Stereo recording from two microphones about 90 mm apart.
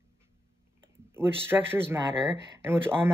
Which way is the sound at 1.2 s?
25° right (ahead or behind).